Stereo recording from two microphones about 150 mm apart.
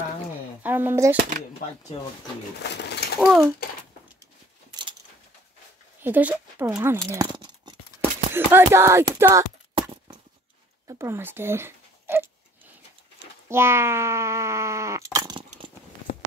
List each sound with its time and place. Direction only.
0.6 s speech: 10° right (ahead or behind)
2.8 s a sound: 90° left
3.2 s speech: centre (ahead or behind)
6.0 s speech: 15° right (ahead or behind)
7.1 s a sound: 25° right (ahead or behind)
8.3 s speech: 15° right (ahead or behind)
10.9 s speech: 20° right (ahead or behind)
13.5 s speech: 15° right (ahead or behind)